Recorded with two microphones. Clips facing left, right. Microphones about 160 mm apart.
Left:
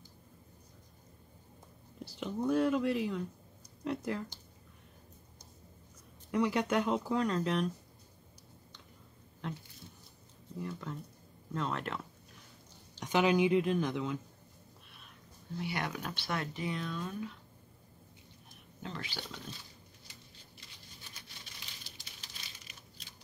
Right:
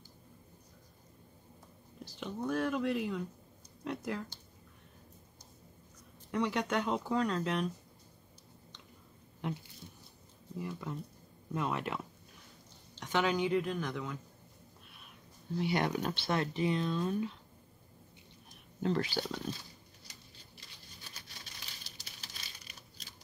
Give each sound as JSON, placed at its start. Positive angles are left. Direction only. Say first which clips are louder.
{"t": 2.1, "sound": "speech", "louder": "left 4 dB", "side_deg": 5}
{"t": 6.3, "sound": "speech", "louder": "left 2 dB", "side_deg": 5}
{"t": 9.4, "sound": "speech", "louder": "right 3 dB", "side_deg": -10}
{"t": 10.6, "sound": "speech", "louder": "right 1 dB", "side_deg": -10}
{"t": 13.0, "sound": "speech", "louder": "left 4 dB", "side_deg": 15}
{"t": 15.6, "sound": "speech", "louder": "right 6 dB", "side_deg": -25}
{"t": 18.8, "sound": "speech", "louder": "right 10 dB", "side_deg": -40}